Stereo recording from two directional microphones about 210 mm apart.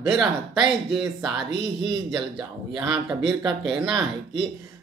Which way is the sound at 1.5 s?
55° right (ahead or behind).